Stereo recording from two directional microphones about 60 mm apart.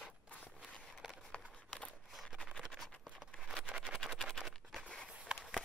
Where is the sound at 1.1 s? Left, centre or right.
Centre.